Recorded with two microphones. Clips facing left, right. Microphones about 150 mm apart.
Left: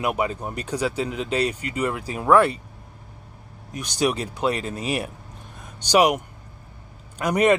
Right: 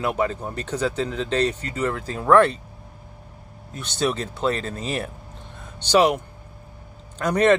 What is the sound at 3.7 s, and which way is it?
Speech, 15° left (ahead or behind).